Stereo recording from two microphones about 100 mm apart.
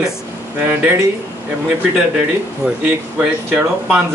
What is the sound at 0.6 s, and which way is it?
Speech, 20° right (ahead or behind).